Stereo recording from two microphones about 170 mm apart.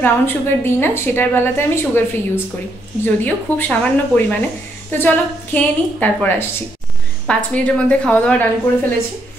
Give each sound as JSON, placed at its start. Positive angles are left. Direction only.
{"t": 0.0, "sound": "a woman's voice", "side_deg": 10}